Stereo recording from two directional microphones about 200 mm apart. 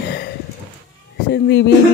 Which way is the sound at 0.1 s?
55° left (ahead or behind).